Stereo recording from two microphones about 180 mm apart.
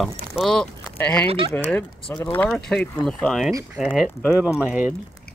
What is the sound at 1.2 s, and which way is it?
Speech, 30° right (ahead or behind).